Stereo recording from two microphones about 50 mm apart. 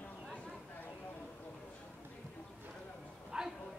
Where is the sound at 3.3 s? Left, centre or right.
Centre.